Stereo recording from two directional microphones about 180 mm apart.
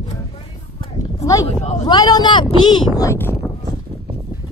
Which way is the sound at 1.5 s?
35° left (ahead or behind).